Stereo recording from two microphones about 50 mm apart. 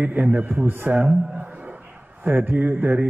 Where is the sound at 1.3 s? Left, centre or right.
Right.